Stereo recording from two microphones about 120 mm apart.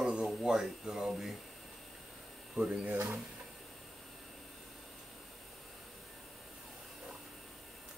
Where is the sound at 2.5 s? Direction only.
5° right (ahead or behind).